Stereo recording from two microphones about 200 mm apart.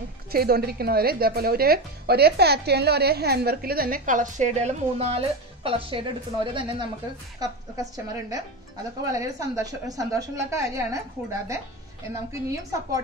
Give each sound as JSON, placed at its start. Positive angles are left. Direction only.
{"t": 0.3, "sound": "a woman's voice", "side_deg": -50}
{"t": 12.3, "sound": "a woman's voice", "side_deg": -15}